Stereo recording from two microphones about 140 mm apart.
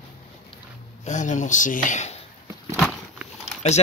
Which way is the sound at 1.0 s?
60° left (ahead or behind).